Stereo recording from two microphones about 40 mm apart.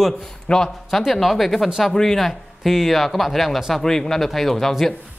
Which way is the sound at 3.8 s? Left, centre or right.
Centre.